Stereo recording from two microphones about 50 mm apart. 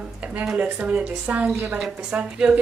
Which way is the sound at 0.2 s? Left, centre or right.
Right.